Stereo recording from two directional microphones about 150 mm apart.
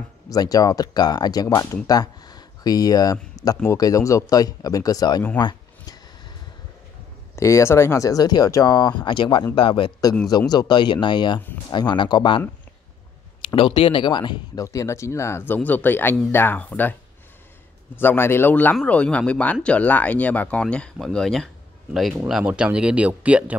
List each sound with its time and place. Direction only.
0.3 s speech: 25° left (ahead or behind)
5.4 s a sound: 30° left (ahead or behind)
7.3 s speech: 20° left (ahead or behind)
13.6 s speech: 35° left (ahead or behind); by 16.9 s 10° left (ahead or behind)
17.9 s speech: 15° left (ahead or behind)
22.3 s speech: 10° right (ahead or behind)